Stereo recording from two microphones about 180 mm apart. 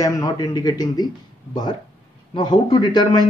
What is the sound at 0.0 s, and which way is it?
Speech, 20° left (ahead or behind).